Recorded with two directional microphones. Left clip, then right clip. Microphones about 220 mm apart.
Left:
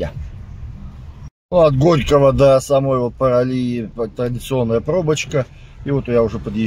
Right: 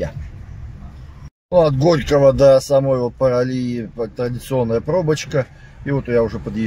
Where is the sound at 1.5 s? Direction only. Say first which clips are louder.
Left 1 dB; 5° left (ahead or behind).